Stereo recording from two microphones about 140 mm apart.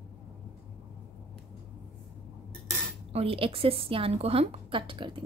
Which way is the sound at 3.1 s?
45° right (ahead or behind).